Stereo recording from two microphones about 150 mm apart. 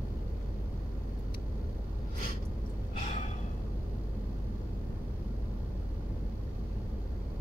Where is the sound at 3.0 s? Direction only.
50° left (ahead or behind).